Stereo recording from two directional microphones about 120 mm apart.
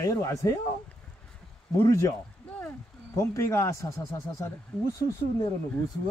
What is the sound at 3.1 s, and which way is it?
Speech, 25° left (ahead or behind).